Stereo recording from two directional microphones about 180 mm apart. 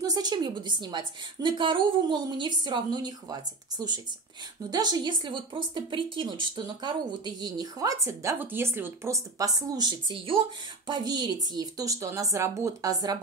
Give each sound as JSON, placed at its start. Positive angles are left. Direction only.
{"t": 0.0, "sound": "a woman's voice", "side_deg": -20}